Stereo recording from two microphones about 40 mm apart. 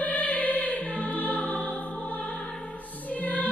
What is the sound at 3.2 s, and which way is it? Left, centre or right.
Music, left.